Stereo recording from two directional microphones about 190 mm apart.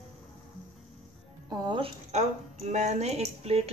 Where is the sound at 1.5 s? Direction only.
25° right (ahead or behind).